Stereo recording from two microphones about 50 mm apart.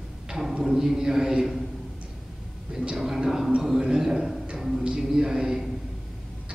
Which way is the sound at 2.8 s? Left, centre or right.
Centre.